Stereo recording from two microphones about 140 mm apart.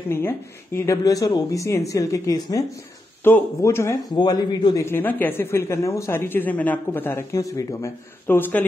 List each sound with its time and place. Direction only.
0.1 s speech: 15° left (ahead or behind)